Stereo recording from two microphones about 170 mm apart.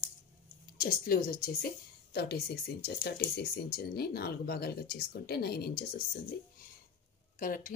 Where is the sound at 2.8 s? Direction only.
65° left (ahead or behind).